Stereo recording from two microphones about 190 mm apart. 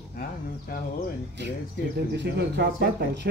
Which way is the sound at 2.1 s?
60° right (ahead or behind).